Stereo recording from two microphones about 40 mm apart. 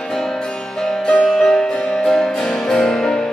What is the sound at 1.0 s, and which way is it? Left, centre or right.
Music, centre.